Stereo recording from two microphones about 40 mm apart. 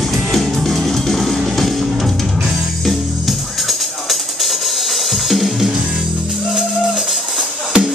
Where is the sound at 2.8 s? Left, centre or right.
Centre.